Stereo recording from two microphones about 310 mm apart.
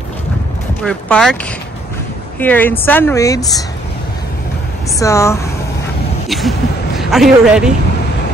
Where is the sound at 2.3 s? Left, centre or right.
Centre.